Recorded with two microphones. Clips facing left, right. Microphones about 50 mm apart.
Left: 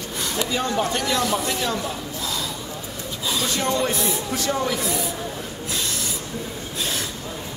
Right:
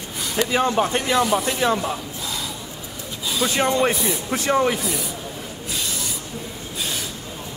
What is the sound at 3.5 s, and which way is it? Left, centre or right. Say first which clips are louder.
Speech: right 4 dB; right.